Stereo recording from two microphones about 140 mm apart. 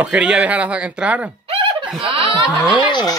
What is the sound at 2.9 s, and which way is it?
Speech, 30° left (ahead or behind).